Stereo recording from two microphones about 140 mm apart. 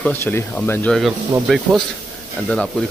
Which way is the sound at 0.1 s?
15° left (ahead or behind).